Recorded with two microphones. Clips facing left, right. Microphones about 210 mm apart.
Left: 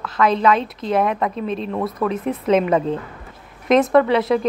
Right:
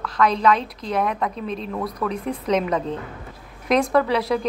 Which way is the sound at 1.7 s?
25° left (ahead or behind).